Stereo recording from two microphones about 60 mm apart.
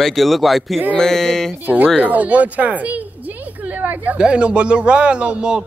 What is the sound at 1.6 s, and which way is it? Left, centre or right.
Speech, right.